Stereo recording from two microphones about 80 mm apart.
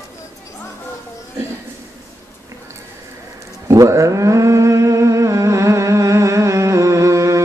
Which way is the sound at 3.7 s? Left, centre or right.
Right.